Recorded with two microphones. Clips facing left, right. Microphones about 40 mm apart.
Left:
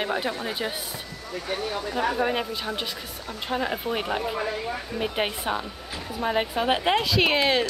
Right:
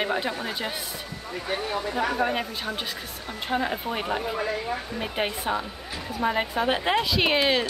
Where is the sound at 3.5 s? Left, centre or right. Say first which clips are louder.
Even; centre.